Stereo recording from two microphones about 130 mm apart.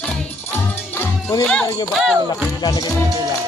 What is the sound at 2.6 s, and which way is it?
Music, 30° left (ahead or behind).